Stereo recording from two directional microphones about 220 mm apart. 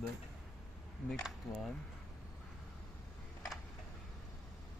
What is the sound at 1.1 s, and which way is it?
Speech, centre (ahead or behind).